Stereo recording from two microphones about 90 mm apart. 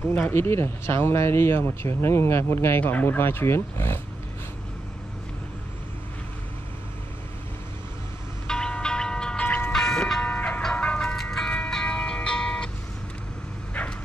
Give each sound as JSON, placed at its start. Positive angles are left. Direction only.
{"t": 0.1, "sound": "speech", "side_deg": 25}
{"t": 8.5, "sound": "music", "side_deg": 10}
{"t": 9.7, "sound": "vehicle", "side_deg": 5}
{"t": 13.8, "sound": "dog", "side_deg": 10}